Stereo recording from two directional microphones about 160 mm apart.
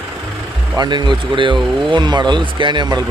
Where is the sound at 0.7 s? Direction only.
30° right (ahead or behind).